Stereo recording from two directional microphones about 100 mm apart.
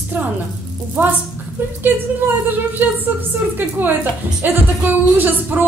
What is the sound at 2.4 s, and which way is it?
Speech, 20° right (ahead or behind).